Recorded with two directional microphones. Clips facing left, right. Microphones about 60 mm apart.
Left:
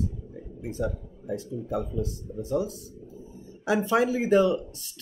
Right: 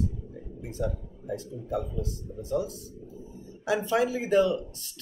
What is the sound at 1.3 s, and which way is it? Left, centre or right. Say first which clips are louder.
Speech: left 2 dB; centre.